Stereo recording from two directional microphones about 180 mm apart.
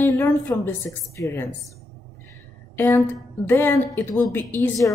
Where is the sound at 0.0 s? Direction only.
15° left (ahead or behind).